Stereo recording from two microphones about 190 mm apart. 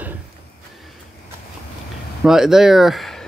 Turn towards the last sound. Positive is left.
turn(degrees=0)  # may be behind; listen again after turning